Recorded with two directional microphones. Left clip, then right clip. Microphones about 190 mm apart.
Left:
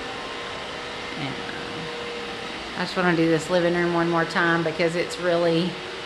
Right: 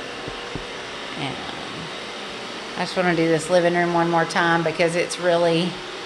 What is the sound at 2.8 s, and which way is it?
Speech, 15° left (ahead or behind).